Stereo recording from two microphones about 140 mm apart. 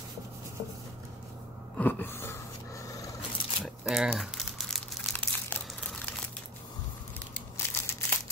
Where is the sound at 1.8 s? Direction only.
10° left (ahead or behind).